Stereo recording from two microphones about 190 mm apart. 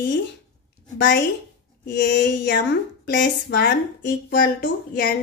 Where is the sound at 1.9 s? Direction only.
60° left (ahead or behind).